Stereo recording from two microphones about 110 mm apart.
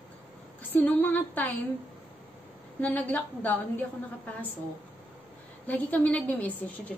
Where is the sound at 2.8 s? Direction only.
15° left (ahead or behind).